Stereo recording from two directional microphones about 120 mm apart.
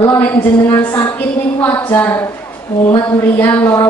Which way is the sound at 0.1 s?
15° left (ahead or behind).